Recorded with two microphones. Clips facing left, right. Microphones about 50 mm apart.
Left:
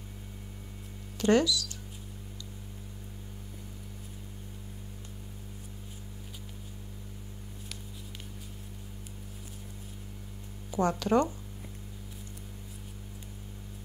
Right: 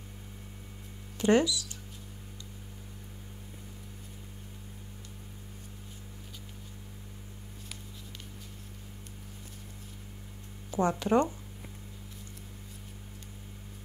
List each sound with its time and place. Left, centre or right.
1.1 s speech: right
10.8 s speech: right